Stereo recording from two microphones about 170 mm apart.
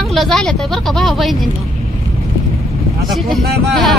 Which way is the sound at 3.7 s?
Centre (ahead or behind).